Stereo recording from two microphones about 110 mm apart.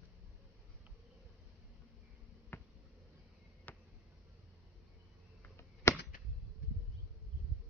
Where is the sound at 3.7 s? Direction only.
15° left (ahead or behind).